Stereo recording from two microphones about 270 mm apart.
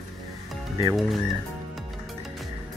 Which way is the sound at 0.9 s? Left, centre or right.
Centre.